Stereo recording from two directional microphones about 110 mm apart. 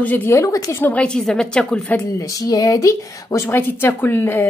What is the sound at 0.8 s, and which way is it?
A woman's voice, 15° left (ahead or behind).